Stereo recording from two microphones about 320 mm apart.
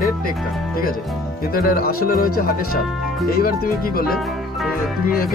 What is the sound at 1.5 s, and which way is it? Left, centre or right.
Speech, left.